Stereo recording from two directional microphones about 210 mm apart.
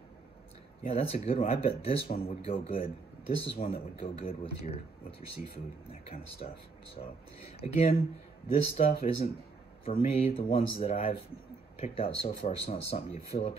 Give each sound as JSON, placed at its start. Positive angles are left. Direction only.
{"t": 0.8, "sound": "speech", "side_deg": 30}
{"t": 3.6, "sound": "speech", "side_deg": 35}
{"t": 6.4, "sound": "speech", "side_deg": 35}
{"t": 7.6, "sound": "speech", "side_deg": 30}